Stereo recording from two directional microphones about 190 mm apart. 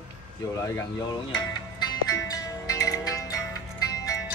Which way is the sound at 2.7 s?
20° left (ahead or behind).